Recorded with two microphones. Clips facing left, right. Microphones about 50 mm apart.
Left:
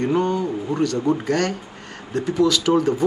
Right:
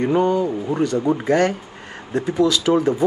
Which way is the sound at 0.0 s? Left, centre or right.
Centre.